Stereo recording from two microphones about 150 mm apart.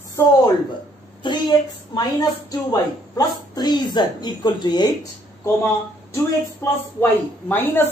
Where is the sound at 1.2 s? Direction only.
30° left (ahead or behind).